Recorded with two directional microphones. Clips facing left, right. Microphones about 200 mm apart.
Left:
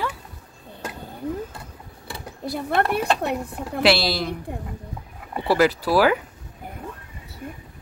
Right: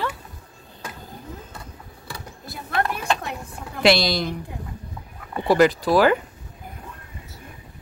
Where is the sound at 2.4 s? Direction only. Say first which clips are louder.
Left 4 dB; 65° left (ahead or behind).